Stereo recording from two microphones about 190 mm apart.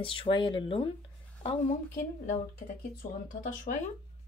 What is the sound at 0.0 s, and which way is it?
Speech, 25° left (ahead or behind).